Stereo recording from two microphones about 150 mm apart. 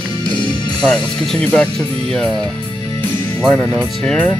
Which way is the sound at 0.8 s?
10° left (ahead or behind).